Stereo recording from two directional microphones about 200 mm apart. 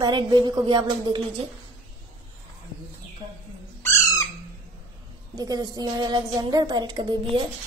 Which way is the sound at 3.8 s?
15° left (ahead or behind).